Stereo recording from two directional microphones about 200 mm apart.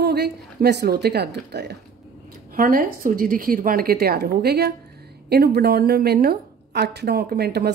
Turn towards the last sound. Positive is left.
turn(degrees=-55)  # may be behind; listen again after turning